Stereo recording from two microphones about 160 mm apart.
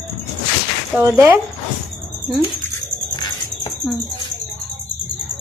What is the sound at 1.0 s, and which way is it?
Speech, 20° right (ahead or behind).